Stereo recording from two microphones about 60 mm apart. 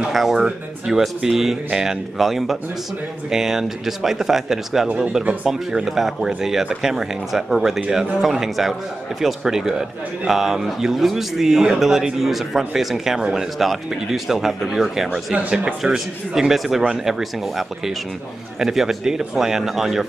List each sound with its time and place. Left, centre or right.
0.1 s a man's voice: centre
15.3 s speech: centre
15.8 s a man's voice: centre